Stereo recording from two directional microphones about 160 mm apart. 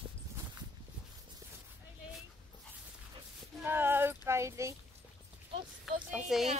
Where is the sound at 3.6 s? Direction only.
15° right (ahead or behind).